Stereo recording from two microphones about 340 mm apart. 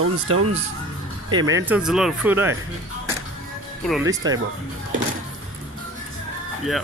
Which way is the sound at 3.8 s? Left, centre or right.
Centre.